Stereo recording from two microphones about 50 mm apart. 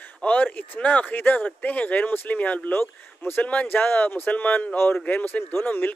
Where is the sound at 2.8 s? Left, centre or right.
Left.